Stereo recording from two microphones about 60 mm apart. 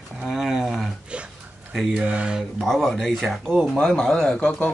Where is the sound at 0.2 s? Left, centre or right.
Centre.